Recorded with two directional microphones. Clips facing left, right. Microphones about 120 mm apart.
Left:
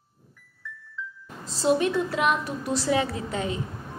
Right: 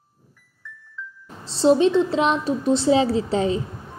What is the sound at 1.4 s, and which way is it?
A woman's voice, 30° right (ahead or behind).